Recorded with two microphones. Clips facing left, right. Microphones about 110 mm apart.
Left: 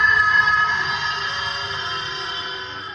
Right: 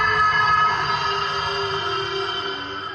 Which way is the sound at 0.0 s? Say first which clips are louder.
Even; 45° right (ahead or behind).